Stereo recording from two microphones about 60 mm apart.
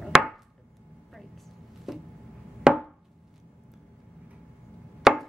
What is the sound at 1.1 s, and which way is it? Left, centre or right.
Vehicle, centre.